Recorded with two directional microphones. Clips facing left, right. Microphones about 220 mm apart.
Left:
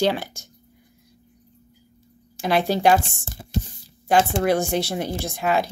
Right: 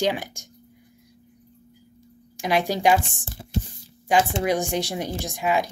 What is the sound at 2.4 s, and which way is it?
Speech, 15° right (ahead or behind).